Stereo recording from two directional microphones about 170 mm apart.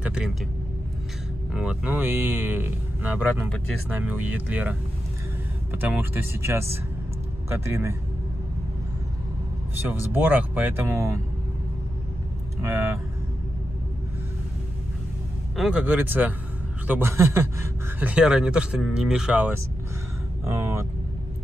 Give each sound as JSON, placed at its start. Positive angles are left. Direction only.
{"t": 0.0, "sound": "vehicle", "side_deg": -5}
{"t": 1.5, "sound": "speech", "side_deg": -5}
{"t": 9.8, "sound": "speech", "side_deg": -10}
{"t": 12.6, "sound": "speech", "side_deg": -15}
{"t": 15.5, "sound": "speech", "side_deg": -5}